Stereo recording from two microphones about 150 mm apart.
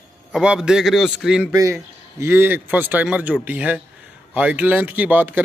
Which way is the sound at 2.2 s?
15° right (ahead or behind).